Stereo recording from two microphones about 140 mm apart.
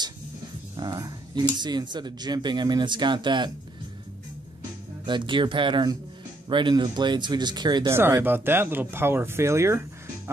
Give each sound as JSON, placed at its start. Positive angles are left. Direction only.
{"t": 0.7, "sound": "speech", "side_deg": -30}
{"t": 5.0, "sound": "speech", "side_deg": -35}
{"t": 7.9, "sound": "speech", "side_deg": -15}